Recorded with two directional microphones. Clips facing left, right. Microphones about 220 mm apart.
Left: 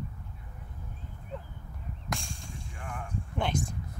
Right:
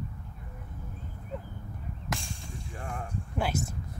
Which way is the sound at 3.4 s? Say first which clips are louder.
Even; 5° right (ahead or behind).